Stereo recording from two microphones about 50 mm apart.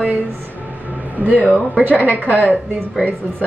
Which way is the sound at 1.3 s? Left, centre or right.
Left.